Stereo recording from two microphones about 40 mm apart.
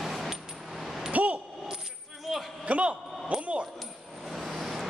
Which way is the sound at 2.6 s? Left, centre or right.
Right.